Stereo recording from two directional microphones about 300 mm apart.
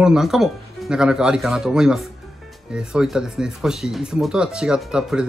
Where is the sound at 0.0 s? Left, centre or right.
Centre.